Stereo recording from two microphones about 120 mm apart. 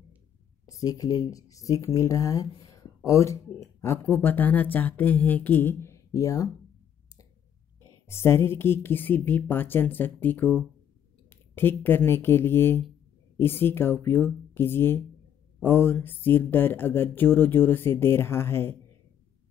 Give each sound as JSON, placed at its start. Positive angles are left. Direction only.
{"t": 0.7, "sound": "speech", "side_deg": 30}
{"t": 8.1, "sound": "speech", "side_deg": 20}